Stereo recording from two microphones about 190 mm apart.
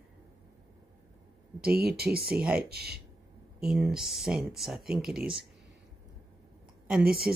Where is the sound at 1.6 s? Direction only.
55° right (ahead or behind).